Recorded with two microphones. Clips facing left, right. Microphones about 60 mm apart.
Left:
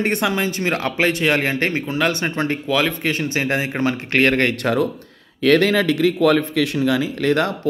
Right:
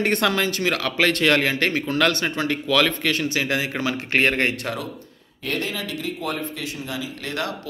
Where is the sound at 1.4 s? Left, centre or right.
Left.